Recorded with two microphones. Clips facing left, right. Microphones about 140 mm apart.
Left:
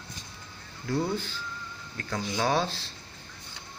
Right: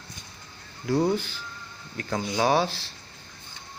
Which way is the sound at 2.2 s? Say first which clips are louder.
Right 4 dB; 10° right (ahead or behind).